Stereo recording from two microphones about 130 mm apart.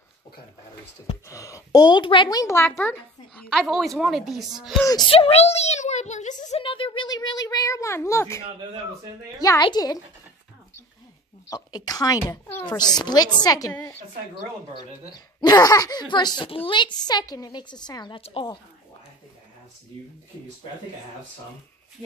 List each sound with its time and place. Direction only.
1.2 s a woman's voice: 25° left (ahead or behind); by 4.7 s centre (ahead or behind)
5.1 s a child's voice: 50° left (ahead or behind); by 6.6 s 65° left (ahead or behind)
6.6 s speech: 40° left (ahead or behind); by 8.4 s 20° left (ahead or behind)
9.4 s speech: 30° left (ahead or behind)
11.5 s speech: 30° left (ahead or behind)
12.3 s speech: 20° left (ahead or behind)
12.6 s speech: 30° left (ahead or behind)